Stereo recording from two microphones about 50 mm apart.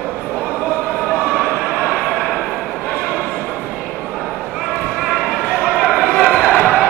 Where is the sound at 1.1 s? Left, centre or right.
Right.